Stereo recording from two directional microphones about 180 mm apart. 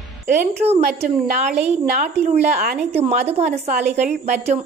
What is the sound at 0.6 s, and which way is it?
A woman's voice, 35° right (ahead or behind).